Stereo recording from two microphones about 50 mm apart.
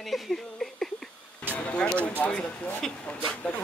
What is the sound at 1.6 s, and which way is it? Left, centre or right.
Speech, left.